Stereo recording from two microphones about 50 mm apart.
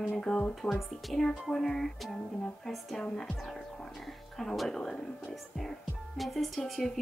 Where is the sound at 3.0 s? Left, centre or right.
Centre.